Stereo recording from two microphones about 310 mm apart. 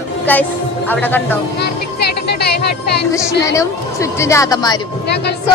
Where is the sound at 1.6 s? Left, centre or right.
Left.